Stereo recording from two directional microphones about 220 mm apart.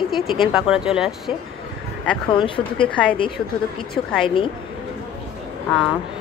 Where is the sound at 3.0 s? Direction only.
5° left (ahead or behind).